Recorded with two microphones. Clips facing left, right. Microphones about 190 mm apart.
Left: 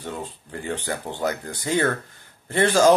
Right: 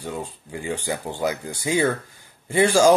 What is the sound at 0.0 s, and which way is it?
Speech, 10° right (ahead or behind).